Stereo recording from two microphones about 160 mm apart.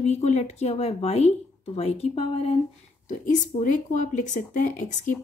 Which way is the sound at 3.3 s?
50° left (ahead or behind).